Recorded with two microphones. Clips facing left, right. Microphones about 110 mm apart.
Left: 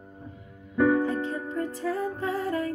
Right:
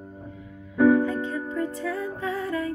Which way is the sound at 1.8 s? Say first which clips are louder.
Left 1 dB; 40° left (ahead or behind).